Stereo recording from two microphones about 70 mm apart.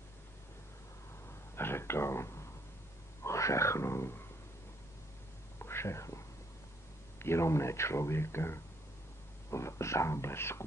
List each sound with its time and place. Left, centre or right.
1.5 s a sound: left
3.3 s speech: left
5.6 s whispering: left
7.2 s speech: left